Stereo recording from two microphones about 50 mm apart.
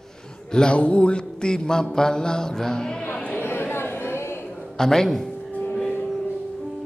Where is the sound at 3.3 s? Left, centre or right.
Left.